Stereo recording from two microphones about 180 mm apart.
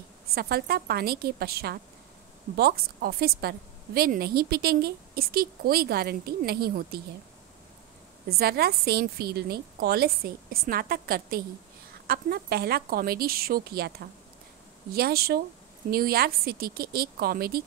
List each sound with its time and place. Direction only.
0.3 s a woman's voice: 60° right (ahead or behind)
8.3 s a woman's voice: 60° right (ahead or behind)